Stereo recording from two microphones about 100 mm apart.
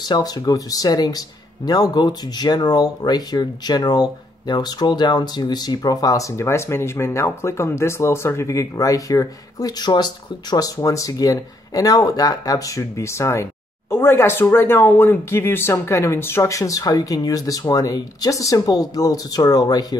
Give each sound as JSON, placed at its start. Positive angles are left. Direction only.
{"t": 0.0, "sound": "speech", "side_deg": 45}